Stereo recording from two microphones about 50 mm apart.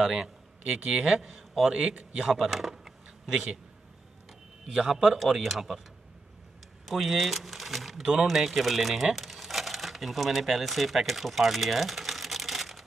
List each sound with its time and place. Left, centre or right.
0.0 s a man's voice: centre
4.7 s a man's voice: centre
6.9 s speech: centre